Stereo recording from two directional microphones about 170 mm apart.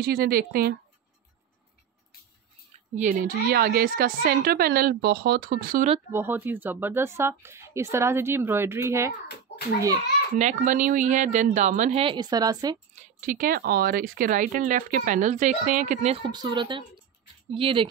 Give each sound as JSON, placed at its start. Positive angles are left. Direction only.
{"t": 0.0, "sound": "a woman's voice", "side_deg": -65}
{"t": 3.0, "sound": "speech", "side_deg": -50}
{"t": 3.4, "sound": "a woman's voice", "side_deg": -60}
{"t": 6.1, "sound": "speech", "side_deg": -10}
{"t": 10.3, "sound": "speech", "side_deg": -45}
{"t": 12.9, "sound": "speech", "side_deg": -50}